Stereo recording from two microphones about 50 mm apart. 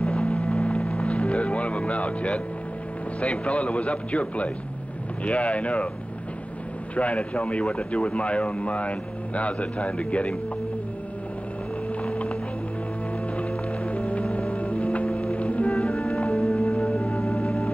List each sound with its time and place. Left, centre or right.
0.0 s a sound: left
3.2 s speech: left
7.0 s speech: left
12.0 s a sound: left
13.4 s music: left
17.3 s organ: centre